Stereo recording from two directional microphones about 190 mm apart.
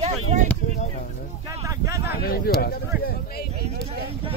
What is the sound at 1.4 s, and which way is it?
Vehicle, 15° right (ahead or behind).